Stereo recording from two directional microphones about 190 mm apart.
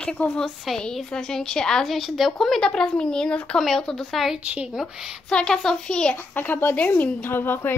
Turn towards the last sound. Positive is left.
turn(degrees=10)  # may be behind; listen again after turning